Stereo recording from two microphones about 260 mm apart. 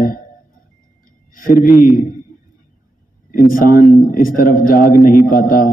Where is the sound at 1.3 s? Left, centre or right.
Left.